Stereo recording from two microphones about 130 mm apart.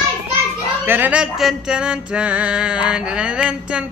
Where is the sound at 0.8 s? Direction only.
15° right (ahead or behind).